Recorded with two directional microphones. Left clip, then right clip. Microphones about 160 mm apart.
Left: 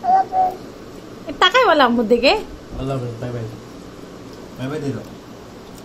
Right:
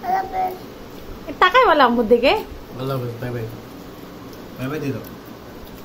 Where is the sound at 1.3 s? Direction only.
10° left (ahead or behind).